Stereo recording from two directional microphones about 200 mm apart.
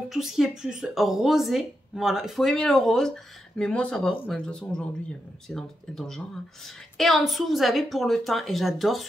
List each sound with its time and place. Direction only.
0.1 s speech: centre (ahead or behind)